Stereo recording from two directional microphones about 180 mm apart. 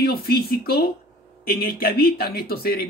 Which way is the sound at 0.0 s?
60° left (ahead or behind).